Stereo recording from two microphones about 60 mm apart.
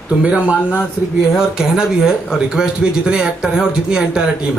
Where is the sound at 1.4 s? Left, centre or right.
Centre.